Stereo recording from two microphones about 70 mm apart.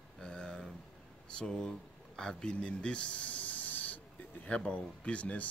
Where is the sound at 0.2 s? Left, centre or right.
Centre.